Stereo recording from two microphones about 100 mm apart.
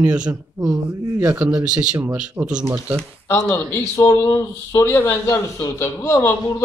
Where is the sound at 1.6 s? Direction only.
10° right (ahead or behind).